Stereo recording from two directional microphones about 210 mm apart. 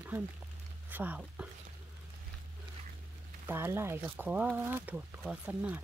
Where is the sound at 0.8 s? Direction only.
10° right (ahead or behind).